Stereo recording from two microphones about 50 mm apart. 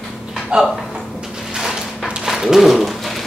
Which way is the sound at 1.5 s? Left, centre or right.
Centre.